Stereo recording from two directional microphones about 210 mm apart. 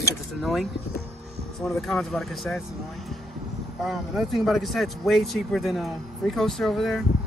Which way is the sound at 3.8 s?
Centre (ahead or behind).